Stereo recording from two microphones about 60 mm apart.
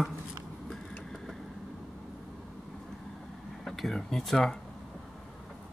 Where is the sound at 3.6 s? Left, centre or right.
Centre.